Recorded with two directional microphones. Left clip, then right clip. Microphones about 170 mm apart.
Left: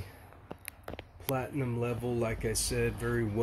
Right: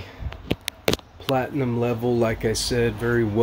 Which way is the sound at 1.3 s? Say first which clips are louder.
Right 11 dB; 25° right (ahead or behind).